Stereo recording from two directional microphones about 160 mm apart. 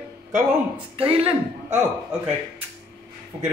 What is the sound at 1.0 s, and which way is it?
Speech, 35° right (ahead or behind).